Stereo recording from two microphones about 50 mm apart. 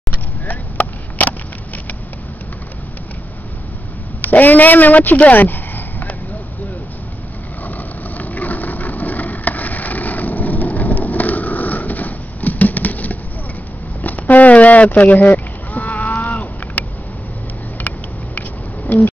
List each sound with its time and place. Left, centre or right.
0.1 s vehicle: left
4.2 s speech: left
7.6 s vehicle: left
10.8 s a sound: left
14.0 s livestock: left